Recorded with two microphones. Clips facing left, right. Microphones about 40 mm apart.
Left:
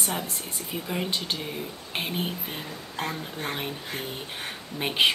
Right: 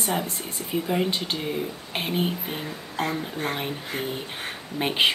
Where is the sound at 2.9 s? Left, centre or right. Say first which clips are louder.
Right 5 dB; right.